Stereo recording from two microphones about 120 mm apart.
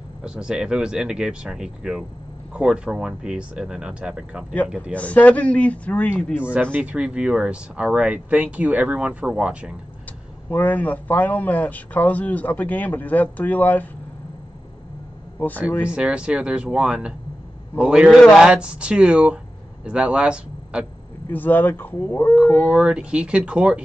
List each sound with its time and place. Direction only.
0.2 s speech: 5° right (ahead or behind)
4.9 s speech: 10° left (ahead or behind)
6.4 s speech: 10° right (ahead or behind)
10.5 s speech: 15° left (ahead or behind)
15.3 s speech: 15° left (ahead or behind)
15.9 s speech: 10° right (ahead or behind)
21.3 s speech: 15° left (ahead or behind)
22.6 s speech: 10° right (ahead or behind)